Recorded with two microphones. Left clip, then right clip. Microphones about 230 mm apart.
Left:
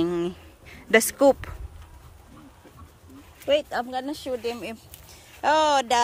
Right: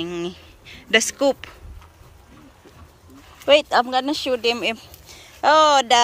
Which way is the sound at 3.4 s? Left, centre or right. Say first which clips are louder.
Right 8 dB; right.